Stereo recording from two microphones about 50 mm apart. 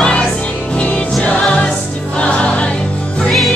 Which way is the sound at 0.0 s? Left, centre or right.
Left.